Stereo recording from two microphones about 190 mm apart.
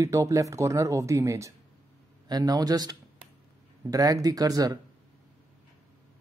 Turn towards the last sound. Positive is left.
turn(degrees=-20)  # may be behind; listen again after turning